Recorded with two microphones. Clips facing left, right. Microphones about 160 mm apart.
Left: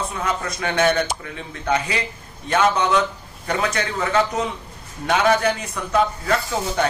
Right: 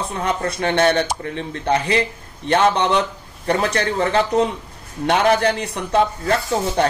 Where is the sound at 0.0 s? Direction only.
35° right (ahead or behind).